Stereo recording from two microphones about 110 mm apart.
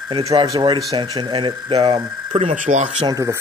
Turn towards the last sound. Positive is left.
turn(degrees=-30)  # may be behind; listen again after turning